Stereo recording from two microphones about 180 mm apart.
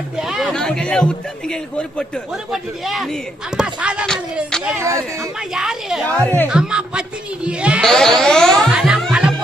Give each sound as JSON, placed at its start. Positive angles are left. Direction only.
{"t": 0.2, "sound": "music", "side_deg": 0}
{"t": 4.7, "sound": "speech", "side_deg": -15}
{"t": 5.5, "sound": "music", "side_deg": -5}
{"t": 6.2, "sound": "speech", "side_deg": 10}
{"t": 6.5, "sound": "music", "side_deg": -5}